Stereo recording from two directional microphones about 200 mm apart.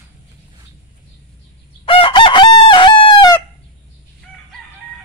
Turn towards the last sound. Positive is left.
turn(degrees=25)  # may be behind; listen again after turning